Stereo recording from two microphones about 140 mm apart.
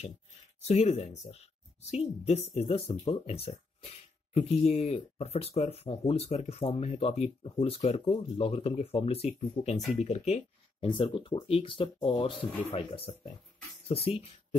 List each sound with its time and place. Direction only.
0.6 s speech: 50° left (ahead or behind)
10.9 s speech: 35° left (ahead or behind)